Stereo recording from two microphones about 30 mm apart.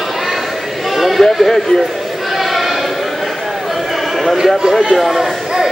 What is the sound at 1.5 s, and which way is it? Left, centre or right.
Speech, centre.